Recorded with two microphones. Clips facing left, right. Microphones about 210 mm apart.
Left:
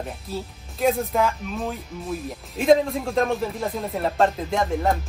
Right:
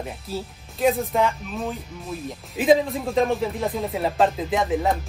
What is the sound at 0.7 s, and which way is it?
Speech, centre (ahead or behind).